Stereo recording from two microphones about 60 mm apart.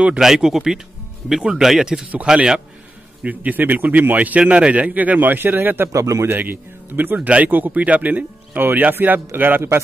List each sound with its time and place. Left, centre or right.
0.2 s speech: centre
3.3 s speech: right
5.9 s speech: right
6.3 s speech: right
7.2 s speech: right